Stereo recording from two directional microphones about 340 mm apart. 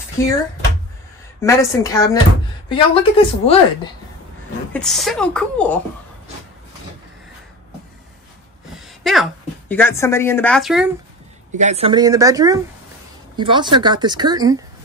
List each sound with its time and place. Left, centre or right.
0.2 s a woman's voice: centre
1.4 s a woman's voice: centre
4.7 s a woman's voice: centre
8.7 s a woman's voice: centre
11.5 s speech: centre